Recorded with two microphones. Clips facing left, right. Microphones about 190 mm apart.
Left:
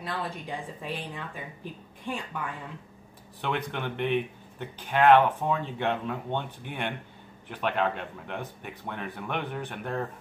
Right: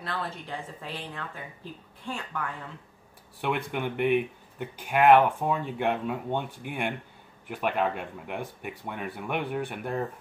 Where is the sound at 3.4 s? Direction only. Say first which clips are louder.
Right 2 dB; 10° right (ahead or behind).